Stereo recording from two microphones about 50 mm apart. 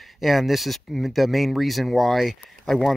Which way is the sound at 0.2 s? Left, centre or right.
Centre.